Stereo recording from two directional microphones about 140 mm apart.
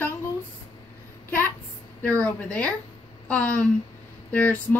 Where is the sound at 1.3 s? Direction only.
15° left (ahead or behind).